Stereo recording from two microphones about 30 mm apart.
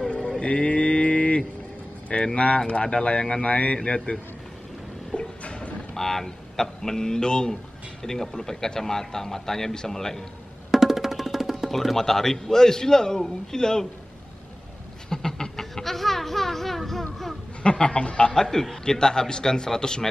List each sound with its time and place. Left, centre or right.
0.4 s mantra: left
2.3 s speech: left
3.4 s speech: left
5.1 s a sound: left
5.9 s a man's voice: centre
8.0 s a man's voice: centre
10.7 s music: centre
11.7 s a man's voice: centre; by 13.8 s left
15.0 s a sound: left
15.8 s speech: centre
17.6 s speech: left
18.3 s a man's voice: centre